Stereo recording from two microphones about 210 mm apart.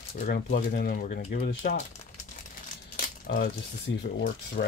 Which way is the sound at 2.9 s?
45° left (ahead or behind).